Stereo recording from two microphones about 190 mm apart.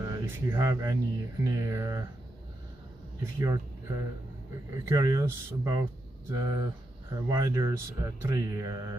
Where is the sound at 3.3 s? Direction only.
15° right (ahead or behind).